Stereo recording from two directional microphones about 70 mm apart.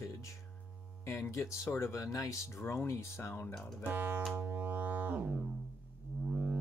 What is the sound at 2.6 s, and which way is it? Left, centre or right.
Speech, left.